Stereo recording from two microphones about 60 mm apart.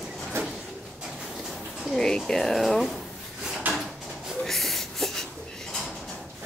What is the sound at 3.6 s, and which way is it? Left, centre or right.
Drawer open or close, right.